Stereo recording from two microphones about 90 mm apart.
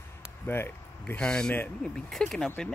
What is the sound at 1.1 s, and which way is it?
Speech, 10° left (ahead or behind).